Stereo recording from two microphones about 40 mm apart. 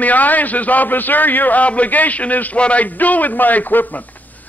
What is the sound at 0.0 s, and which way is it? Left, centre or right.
A man's voice, left.